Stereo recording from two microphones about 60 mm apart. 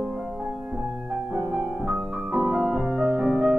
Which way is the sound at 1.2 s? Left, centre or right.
Right.